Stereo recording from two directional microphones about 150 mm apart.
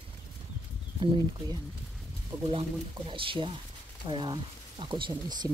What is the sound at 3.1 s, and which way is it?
Speech, 35° right (ahead or behind).